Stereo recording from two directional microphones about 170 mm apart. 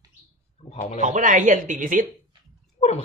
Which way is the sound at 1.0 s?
50° right (ahead or behind).